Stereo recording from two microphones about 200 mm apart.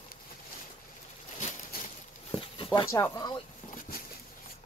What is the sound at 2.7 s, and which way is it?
Speech, 15° left (ahead or behind).